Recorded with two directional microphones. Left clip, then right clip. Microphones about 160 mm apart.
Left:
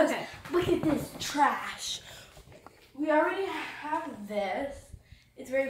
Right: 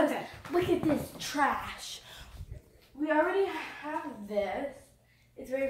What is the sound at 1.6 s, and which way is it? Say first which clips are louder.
Speech: left 4 dB; 25° right (ahead or behind).